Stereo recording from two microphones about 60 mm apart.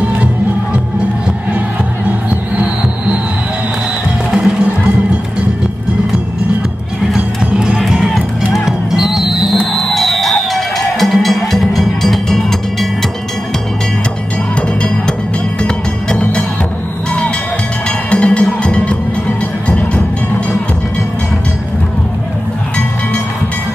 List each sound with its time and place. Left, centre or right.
2.2 s music: right
4.4 s music: centre
7.2 s music: centre
14.5 s music: centre
17.8 s music: centre